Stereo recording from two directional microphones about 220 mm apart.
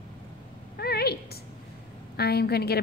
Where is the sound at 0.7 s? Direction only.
45° left (ahead or behind).